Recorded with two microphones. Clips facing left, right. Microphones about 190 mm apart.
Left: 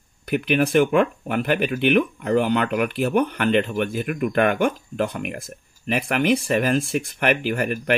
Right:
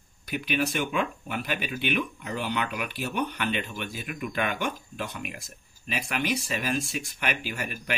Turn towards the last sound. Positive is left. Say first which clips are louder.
# left 11 dB
turn(degrees=55)  # may be behind; listen again after turning